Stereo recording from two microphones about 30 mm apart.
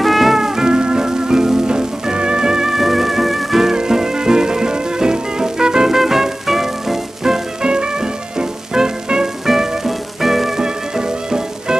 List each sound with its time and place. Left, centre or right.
0.0 s music: centre
0.4 s music: right
2.7 s music: centre
3.7 s music: right
5.9 s music: centre
7.6 s music: right
9.5 s music: centre
10.6 s music: right